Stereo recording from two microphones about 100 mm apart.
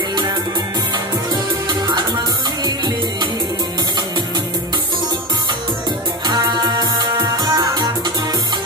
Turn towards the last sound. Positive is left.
turn(degrees=-45)  # may be behind; listen again after turning